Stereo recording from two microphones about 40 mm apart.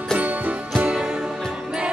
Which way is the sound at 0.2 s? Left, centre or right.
Right.